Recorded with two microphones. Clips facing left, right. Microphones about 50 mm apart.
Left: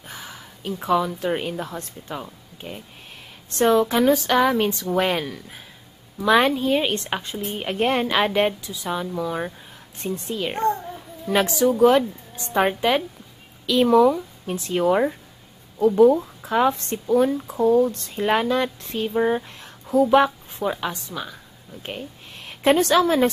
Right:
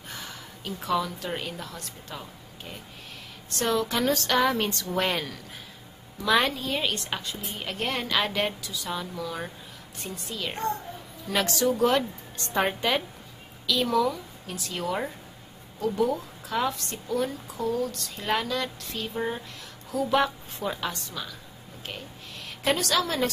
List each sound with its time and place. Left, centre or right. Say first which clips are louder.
0.1 s a woman's voice: left 2 dB; centre
13.7 s a woman's voice: left 9 dB; left